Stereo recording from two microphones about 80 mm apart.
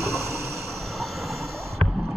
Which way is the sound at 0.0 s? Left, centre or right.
Right.